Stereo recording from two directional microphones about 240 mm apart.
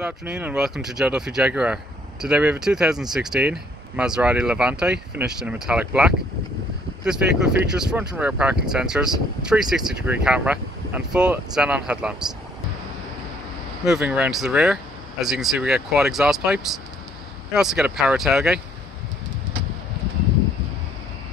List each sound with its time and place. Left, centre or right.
0.0 s speech: centre
7.4 s speech: centre
13.8 s speech: centre